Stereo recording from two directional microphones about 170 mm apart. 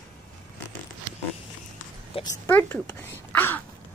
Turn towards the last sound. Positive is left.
turn(degrees=10)  # may be behind; listen again after turning